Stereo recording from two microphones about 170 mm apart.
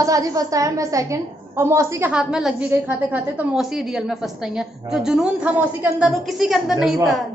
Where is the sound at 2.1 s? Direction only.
5° right (ahead or behind).